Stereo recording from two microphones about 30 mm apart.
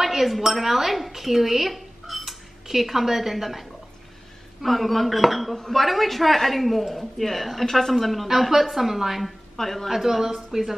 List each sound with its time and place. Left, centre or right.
0.0 s a woman's voice: centre
9.6 s speech: centre
9.8 s speech: centre